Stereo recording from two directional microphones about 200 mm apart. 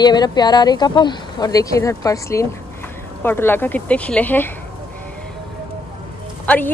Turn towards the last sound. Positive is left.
turn(degrees=10)  # may be behind; listen again after turning